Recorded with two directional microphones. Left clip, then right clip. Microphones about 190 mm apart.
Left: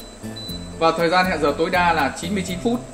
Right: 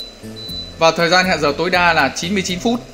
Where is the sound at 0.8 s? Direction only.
60° right (ahead or behind).